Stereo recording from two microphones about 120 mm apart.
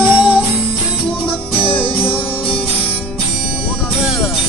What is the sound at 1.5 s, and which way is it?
Music, 45° left (ahead or behind).